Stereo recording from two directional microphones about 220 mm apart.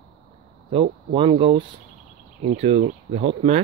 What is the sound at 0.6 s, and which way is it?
Speech, 25° right (ahead or behind).